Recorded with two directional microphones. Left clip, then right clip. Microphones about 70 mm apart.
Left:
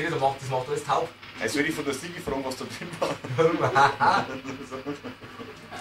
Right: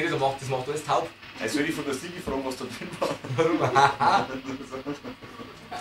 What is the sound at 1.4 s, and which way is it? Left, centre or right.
Speech, centre.